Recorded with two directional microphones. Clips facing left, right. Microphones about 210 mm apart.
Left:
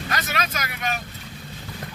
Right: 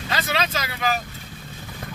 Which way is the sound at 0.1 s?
30° right (ahead or behind).